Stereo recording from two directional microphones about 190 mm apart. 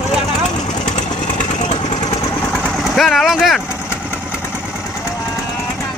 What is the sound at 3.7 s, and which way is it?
Vehicle, 10° left (ahead or behind).